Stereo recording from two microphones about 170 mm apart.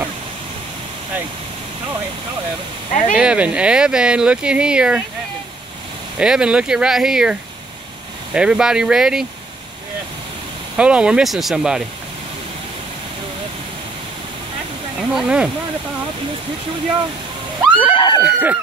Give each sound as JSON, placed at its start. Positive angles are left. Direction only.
{"t": 2.9, "sound": "speech", "side_deg": 50}
{"t": 3.2, "sound": "speech", "side_deg": -5}
{"t": 6.1, "sound": "speech", "side_deg": -5}
{"t": 10.8, "sound": "speech", "side_deg": -5}
{"t": 15.0, "sound": "speech", "side_deg": -5}
{"t": 17.7, "sound": "screaming", "side_deg": 30}
{"t": 18.2, "sound": "speech", "side_deg": -10}